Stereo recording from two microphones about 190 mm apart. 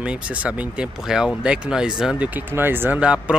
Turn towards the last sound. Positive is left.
turn(degrees=-5)  # may be behind; listen again after turning